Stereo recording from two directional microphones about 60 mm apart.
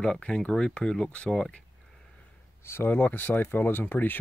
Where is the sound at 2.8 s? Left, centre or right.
Left.